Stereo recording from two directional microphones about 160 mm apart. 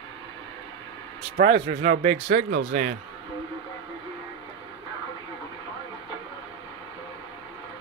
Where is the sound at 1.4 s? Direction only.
60° right (ahead or behind).